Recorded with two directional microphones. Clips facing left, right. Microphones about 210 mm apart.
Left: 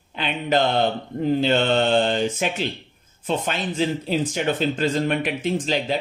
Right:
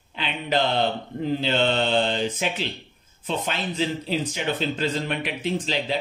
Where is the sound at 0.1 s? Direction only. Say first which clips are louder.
Left 4 dB; 50° left (ahead or behind).